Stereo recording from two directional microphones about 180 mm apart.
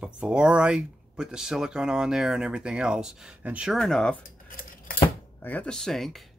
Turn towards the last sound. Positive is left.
turn(degrees=0)  # may be behind; listen again after turning